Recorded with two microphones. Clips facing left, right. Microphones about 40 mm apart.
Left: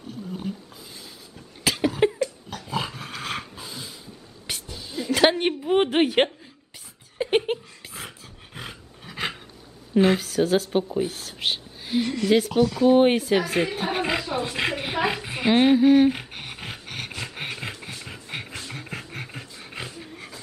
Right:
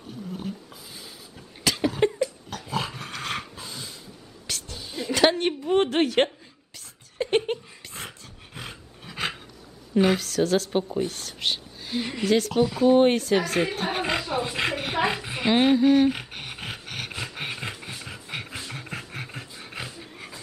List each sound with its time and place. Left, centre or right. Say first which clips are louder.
0.3 s speech: left 2 dB; centre
1.6 s cough: left 1 dB; centre
2.1 s dog: even; centre
4.5 s a sound: left 1 dB; centre
4.7 s a sound: left 2 dB; centre
5.1 s a sound: left 1 dB; centre
8.5 s roar: left 1 dB; centre
9.9 s speech: left 2 dB; centre
12.0 s speech: left 4 dB; centre
12.3 s speech: left 1 dB; centre
12.8 s roaring cats: even; centre
18.5 s dog: even; centre